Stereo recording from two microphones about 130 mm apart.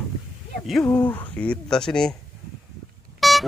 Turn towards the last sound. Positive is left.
turn(degrees=0)  # may be behind; listen again after turning